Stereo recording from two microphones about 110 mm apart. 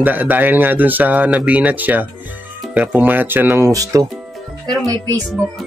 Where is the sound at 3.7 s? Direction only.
30° right (ahead or behind).